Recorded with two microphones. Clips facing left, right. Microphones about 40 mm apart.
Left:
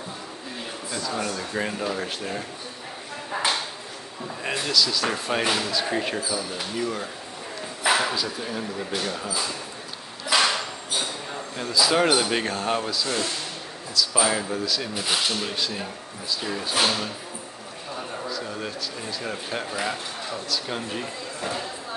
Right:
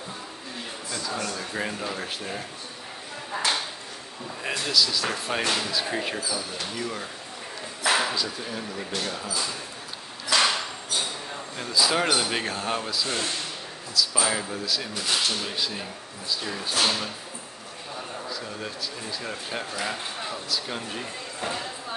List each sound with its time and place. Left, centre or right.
0.9 s speech: centre
3.3 s chopping: centre
4.4 s speech: centre
5.7 s speech: centre
10.3 s a sound: centre
11.7 s speech: centre
14.1 s speech: centre
15.0 s speech: centre
15.5 s speech: centre
18.3 s speech: centre
20.2 s speech: centre
20.7 s speech: centre